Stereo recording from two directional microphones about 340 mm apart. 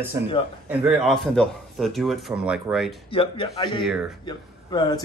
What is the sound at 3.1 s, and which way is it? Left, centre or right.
Speech, centre.